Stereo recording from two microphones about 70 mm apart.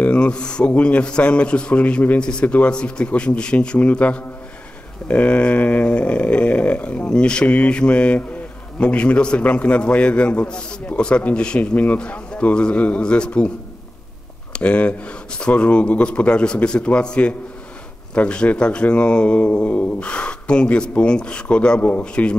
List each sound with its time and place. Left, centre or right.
0.0 s a man's voice: centre
14.5 s a man's voice: centre